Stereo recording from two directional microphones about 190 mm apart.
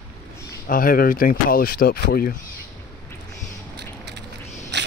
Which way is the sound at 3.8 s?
60° right (ahead or behind).